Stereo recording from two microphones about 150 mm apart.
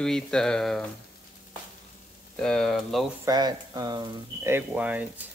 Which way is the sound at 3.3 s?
25° right (ahead or behind).